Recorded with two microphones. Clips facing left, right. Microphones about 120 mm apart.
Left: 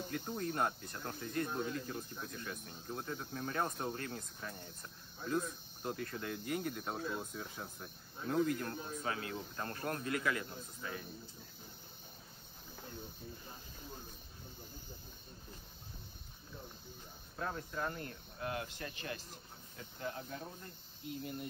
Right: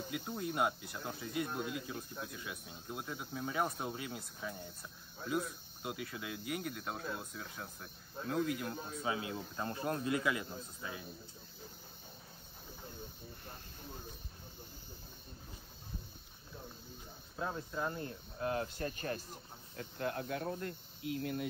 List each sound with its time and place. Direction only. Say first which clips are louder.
0.1 s speech: even; 10° right (ahead or behind)
17.4 s speech: right 1 dB; 15° right (ahead or behind); by 19.2 s 40° right (ahead or behind)
19.8 s speech: right 5 dB; 60° right (ahead or behind); by 21.5 s 90° right